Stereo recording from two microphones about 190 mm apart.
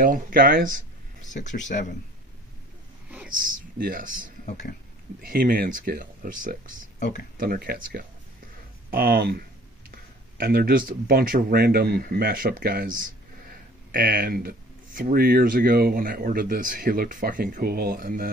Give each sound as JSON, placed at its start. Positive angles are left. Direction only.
{"t": 0.0, "sound": "speech", "side_deg": -50}
{"t": 1.2, "sound": "speech", "side_deg": 40}
{"t": 3.3, "sound": "speech", "side_deg": -45}
{"t": 4.5, "sound": "speech", "side_deg": 40}
{"t": 5.2, "sound": "speech", "side_deg": -50}